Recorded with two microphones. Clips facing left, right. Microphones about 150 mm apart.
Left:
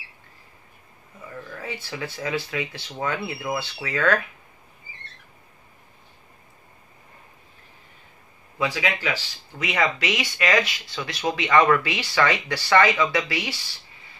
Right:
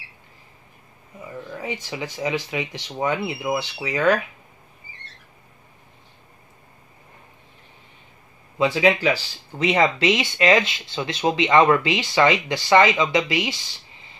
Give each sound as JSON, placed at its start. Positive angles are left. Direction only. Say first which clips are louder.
{"t": 1.2, "sound": "speech", "louder": "right 4 dB", "side_deg": -20}
{"t": 8.5, "sound": "speech", "louder": "right 7 dB", "side_deg": -25}